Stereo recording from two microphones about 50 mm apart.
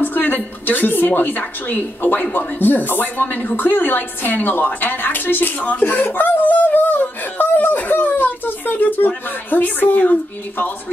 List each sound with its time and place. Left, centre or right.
0.0 s a woman's voice: left